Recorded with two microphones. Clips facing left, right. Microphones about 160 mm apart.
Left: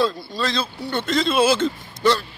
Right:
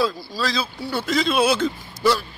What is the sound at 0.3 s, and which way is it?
A man's voice, centre (ahead or behind).